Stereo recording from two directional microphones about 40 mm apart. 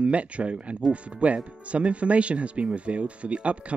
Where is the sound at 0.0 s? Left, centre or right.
Right.